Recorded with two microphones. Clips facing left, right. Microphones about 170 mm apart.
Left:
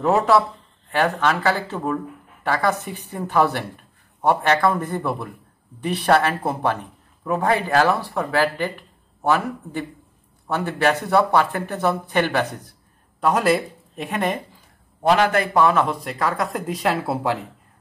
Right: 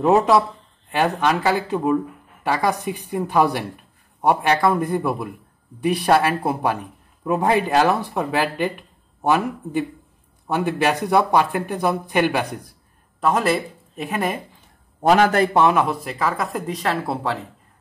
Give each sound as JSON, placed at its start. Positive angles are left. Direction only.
{"t": 0.0, "sound": "speech", "side_deg": -15}
{"t": 13.2, "sound": "speech", "side_deg": 0}
{"t": 15.0, "sound": "a man's voice", "side_deg": -45}
{"t": 15.6, "sound": "speech", "side_deg": -10}